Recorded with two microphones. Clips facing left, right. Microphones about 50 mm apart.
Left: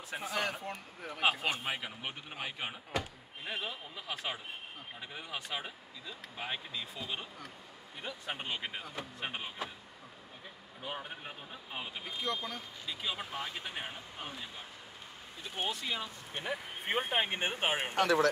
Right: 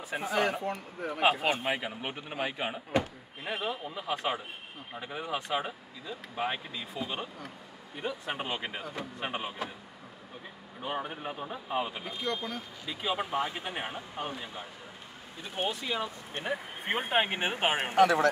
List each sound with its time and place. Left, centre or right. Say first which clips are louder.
0.1 s speech: right 6 dB; centre
1.5 s speech: right 6 dB; right
10.8 s speech: right 7 dB; centre
12.2 s speech: right 3 dB; centre
12.8 s speech: right 7 dB; centre
15.4 s speech: right 4 dB; centre
17.3 s speech: right 3 dB; right
17.6 s speech: right 5 dB; right
18.0 s speech: right 4 dB; right